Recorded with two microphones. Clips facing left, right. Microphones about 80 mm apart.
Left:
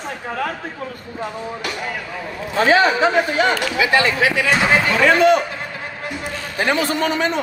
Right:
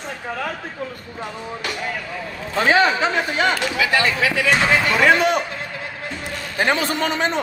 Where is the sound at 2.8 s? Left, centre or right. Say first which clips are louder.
Left 3 dB; left.